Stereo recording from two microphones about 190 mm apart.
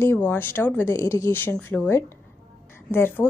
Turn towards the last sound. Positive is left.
turn(degrees=10)  # may be behind; listen again after turning